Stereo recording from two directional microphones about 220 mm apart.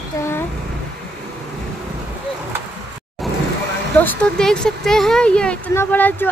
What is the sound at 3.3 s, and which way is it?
Vehicle, centre (ahead or behind).